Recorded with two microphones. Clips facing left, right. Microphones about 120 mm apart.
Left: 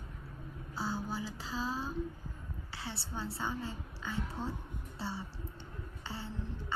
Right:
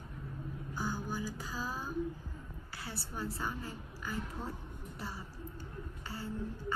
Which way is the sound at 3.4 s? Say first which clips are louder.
Left 2 dB; 25° left (ahead or behind).